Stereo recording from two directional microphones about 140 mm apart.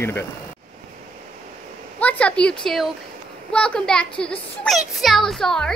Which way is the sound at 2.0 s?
10° left (ahead or behind).